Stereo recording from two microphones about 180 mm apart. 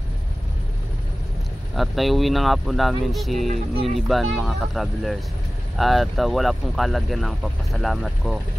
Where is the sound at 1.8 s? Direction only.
Centre (ahead or behind).